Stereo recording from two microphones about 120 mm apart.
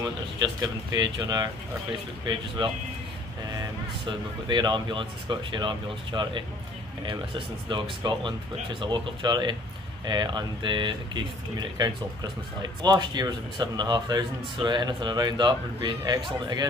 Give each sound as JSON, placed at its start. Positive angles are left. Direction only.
{"t": 0.0, "sound": "a man's voice", "side_deg": -35}